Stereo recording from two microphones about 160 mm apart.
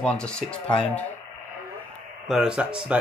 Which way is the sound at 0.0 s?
5° left (ahead or behind).